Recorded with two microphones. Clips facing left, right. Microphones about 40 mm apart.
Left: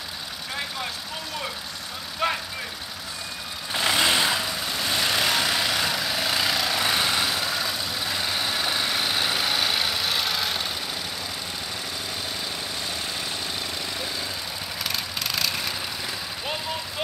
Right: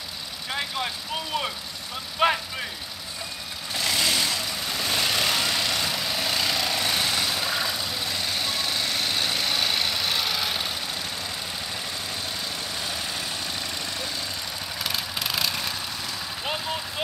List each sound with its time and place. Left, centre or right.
2.2 s vehicle: right
3.7 s vehicle: left
4.6 s vehicle: centre
14.8 s vehicle: centre